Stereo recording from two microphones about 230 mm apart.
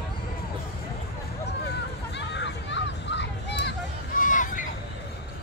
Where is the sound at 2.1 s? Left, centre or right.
Left.